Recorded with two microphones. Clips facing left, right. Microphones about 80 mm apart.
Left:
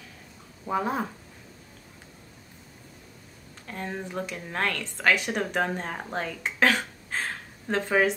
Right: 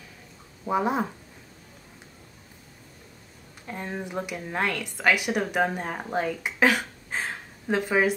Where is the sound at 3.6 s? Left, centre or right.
Centre.